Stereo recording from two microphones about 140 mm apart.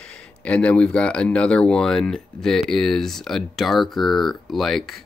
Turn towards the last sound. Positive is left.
turn(degrees=0)  # may be behind; listen again after turning